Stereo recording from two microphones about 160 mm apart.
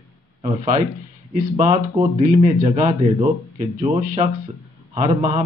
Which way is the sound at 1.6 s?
50° right (ahead or behind).